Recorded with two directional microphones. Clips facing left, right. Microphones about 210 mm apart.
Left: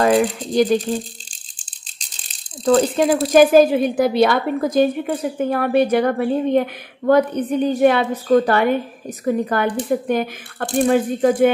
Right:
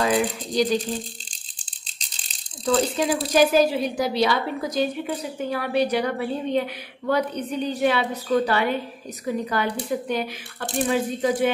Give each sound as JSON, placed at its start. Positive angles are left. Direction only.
{"t": 0.0, "sound": "a woman's voice", "side_deg": 50}
{"t": 2.6, "sound": "a woman's voice", "side_deg": 50}